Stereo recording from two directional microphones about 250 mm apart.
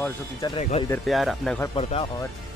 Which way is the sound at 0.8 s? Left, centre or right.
Centre.